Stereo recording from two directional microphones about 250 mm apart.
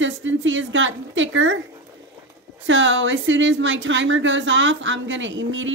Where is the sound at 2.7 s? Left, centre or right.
Right.